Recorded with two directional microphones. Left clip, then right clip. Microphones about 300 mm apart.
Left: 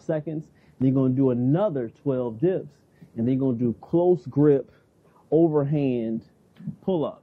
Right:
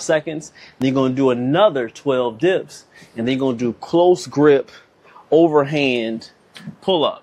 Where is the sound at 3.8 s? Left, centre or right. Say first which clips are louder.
Right 8 dB; right.